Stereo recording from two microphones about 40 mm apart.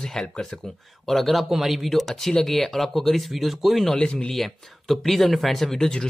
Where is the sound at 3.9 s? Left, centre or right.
Left.